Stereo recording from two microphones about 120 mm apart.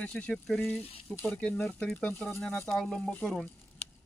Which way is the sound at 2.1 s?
20° left (ahead or behind).